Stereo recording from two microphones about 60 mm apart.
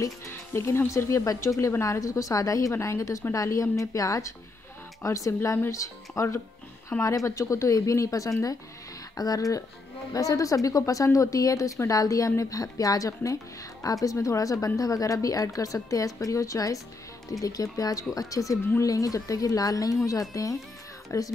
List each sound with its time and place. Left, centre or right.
0.6 s speech: left
2.7 s speech: left
9.1 s a woman's voice: left
18.3 s a woman's voice: left
21.1 s speech: left